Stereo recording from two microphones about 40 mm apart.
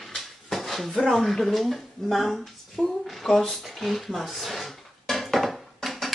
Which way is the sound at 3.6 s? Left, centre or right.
Centre.